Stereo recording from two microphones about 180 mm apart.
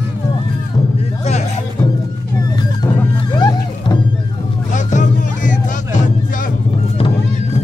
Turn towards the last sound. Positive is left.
turn(degrees=45)  # may be behind; listen again after turning